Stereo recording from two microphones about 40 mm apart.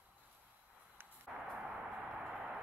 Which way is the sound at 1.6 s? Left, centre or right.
Right.